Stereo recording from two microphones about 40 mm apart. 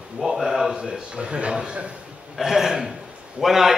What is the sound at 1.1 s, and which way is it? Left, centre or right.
Speech, right.